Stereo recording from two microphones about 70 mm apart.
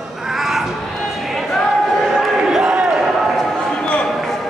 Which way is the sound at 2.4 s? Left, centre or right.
Centre.